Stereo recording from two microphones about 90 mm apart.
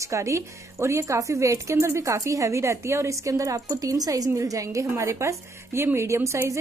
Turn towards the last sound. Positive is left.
turn(degrees=-30)  # may be behind; listen again after turning